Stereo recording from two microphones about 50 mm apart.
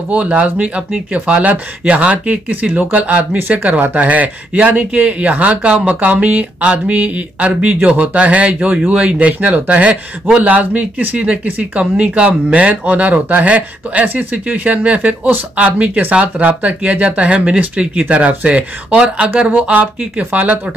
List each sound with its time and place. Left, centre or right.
0.1 s speech: right